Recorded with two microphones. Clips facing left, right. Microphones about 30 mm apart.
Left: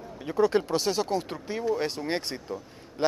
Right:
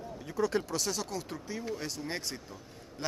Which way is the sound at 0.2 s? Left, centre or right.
Left.